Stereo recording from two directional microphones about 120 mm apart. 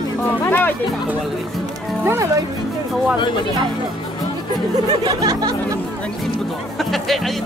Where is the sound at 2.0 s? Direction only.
25° right (ahead or behind).